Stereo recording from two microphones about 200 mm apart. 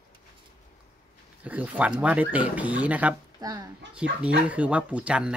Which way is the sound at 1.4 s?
10° right (ahead or behind).